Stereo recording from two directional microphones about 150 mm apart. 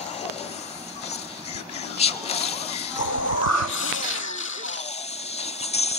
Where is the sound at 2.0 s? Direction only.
45° left (ahead or behind).